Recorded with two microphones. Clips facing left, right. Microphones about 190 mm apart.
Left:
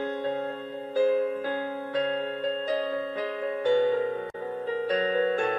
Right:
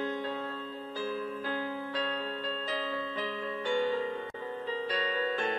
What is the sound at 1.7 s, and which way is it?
Music, 45° left (ahead or behind).